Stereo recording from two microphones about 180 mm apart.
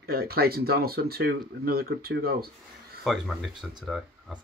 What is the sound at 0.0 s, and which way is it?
Speech, 60° right (ahead or behind).